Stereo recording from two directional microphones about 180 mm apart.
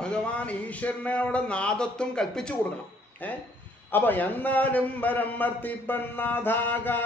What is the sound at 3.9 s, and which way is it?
A man's voice, 10° left (ahead or behind).